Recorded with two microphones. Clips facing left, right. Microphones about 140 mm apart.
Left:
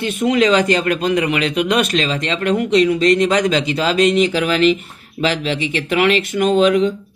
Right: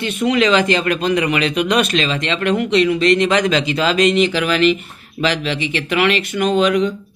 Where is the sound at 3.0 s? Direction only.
70° right (ahead or behind).